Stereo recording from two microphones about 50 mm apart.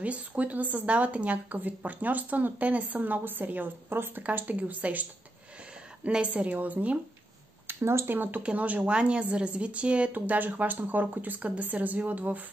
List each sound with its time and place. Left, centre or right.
0.0 s speech: right
4.2 s speech: right
6.2 s a woman's voice: right
7.6 s a sound: right
8.1 s speech: right
8.4 s a woman's voice: right
10.1 s speech: right